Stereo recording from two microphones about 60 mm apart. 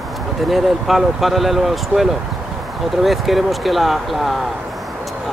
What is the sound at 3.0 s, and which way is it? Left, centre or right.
Speech, centre.